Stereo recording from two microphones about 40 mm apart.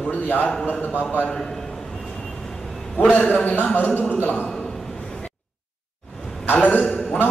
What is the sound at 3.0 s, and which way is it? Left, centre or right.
Speech, left.